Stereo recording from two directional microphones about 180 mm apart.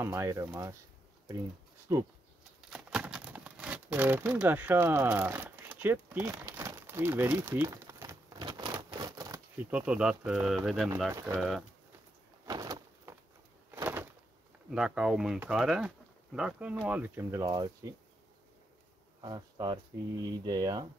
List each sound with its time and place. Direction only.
0.0 s speech: 15° right (ahead or behind)
1.9 s speech: 20° right (ahead or behind)
2.7 s crumpling: 5° right (ahead or behind); by 9.4 s 20° right (ahead or behind)
9.7 s speech: 5° right (ahead or behind)
11.1 s speech: 15° right (ahead or behind)
12.4 s door: 20° right (ahead or behind)
13.7 s a sound: 10° right (ahead or behind)
14.7 s speech: 5° right (ahead or behind); by 17.9 s 20° right (ahead or behind)
19.2 s speech: 25° right (ahead or behind)